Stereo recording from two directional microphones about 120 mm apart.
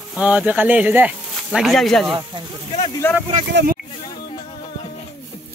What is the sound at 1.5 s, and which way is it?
Speech, centre (ahead or behind).